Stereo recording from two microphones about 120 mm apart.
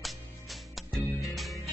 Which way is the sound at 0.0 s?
Centre (ahead or behind).